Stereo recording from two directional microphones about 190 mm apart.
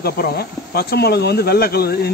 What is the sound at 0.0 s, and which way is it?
Speech, 55° left (ahead or behind).